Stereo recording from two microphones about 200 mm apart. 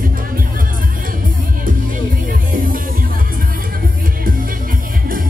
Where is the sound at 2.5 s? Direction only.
45° right (ahead or behind).